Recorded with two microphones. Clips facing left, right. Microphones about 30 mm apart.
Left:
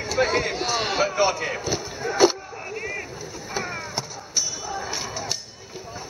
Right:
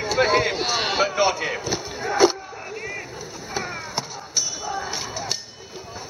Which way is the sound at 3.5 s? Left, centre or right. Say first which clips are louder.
Right 1 dB; centre.